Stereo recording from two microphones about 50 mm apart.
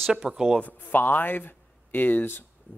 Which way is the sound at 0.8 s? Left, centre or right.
Left.